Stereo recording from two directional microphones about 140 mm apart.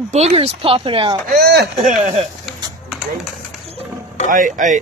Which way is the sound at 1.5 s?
90° right.